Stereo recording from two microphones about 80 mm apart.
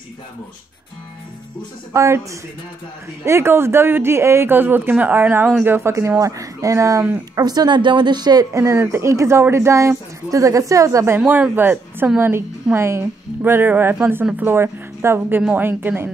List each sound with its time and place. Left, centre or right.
2.0 s speech: right
3.3 s speech: right
7.3 s speech: right
8.5 s speech: right
11.1 s a woman's voice: right